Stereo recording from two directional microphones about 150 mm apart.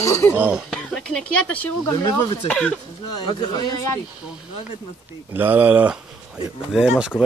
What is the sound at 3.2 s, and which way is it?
Speech, 30° left (ahead or behind).